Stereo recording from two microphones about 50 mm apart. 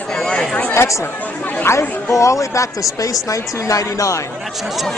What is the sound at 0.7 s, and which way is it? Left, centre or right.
Speech, left.